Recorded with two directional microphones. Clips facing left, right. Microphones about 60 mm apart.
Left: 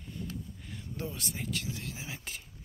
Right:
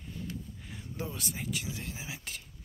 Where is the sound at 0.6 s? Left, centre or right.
Centre.